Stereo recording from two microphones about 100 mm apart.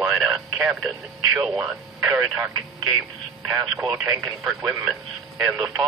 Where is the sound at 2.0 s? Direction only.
25° right (ahead or behind).